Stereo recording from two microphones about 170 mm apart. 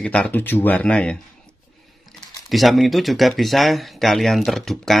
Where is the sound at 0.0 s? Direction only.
5° left (ahead or behind).